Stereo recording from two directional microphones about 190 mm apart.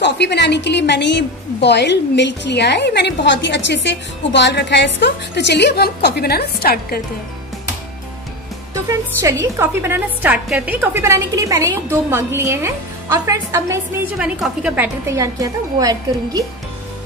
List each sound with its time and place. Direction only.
0.0 s a woman's voice: 65° left (ahead or behind)
9.2 s a woman's voice: 15° right (ahead or behind)
14.1 s a woman's voice: 5° right (ahead or behind)
15.0 s a woman's voice: 15° right (ahead or behind)